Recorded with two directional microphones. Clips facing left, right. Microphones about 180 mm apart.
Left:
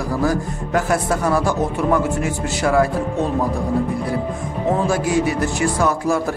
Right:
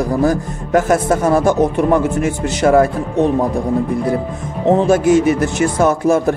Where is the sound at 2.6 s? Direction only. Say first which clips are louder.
Right 6 dB; 45° right (ahead or behind).